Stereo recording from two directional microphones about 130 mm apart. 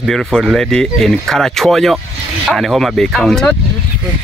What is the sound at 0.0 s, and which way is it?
Speech, centre (ahead or behind).